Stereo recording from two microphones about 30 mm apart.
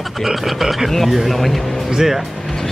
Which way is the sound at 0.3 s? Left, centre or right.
Centre.